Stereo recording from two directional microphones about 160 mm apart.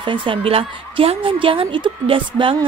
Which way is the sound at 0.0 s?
30° right (ahead or behind).